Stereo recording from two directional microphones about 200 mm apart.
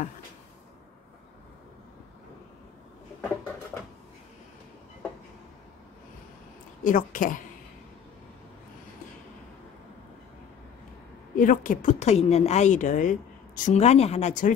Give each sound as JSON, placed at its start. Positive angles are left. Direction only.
{"t": 6.8, "sound": "a woman's voice", "side_deg": 40}
{"t": 11.3, "sound": "a woman's voice", "side_deg": 40}